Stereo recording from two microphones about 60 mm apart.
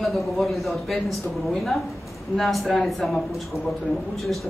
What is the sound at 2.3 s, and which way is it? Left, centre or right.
Speech, centre.